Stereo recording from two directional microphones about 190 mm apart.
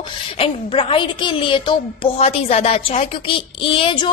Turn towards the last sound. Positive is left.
turn(degrees=30)  # may be behind; listen again after turning